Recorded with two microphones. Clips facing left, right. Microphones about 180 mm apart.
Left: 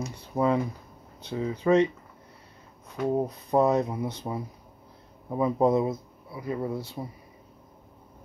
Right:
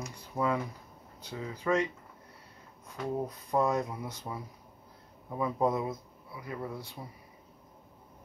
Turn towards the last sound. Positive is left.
turn(degrees=30)  # may be behind; listen again after turning